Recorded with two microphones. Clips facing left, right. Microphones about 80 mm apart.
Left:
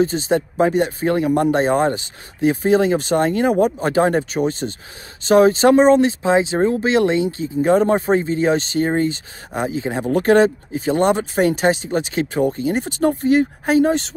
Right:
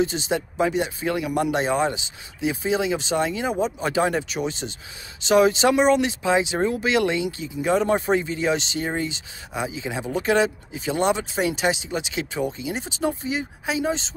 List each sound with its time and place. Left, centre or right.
0.0 s speech: left